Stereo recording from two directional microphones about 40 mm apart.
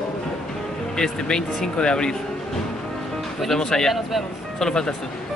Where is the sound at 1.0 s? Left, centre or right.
Centre.